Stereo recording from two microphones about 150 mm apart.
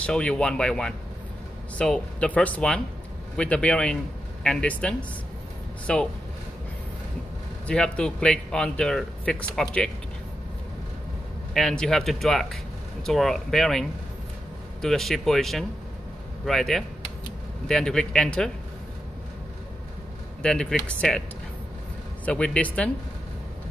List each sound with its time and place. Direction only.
0.0 s a man's voice: 5° left (ahead or behind)
7.6 s a man's voice: 5° left (ahead or behind)
11.5 s a man's voice: 5° left (ahead or behind)
20.4 s a man's voice: 5° left (ahead or behind)
22.2 s speech: 5° left (ahead or behind)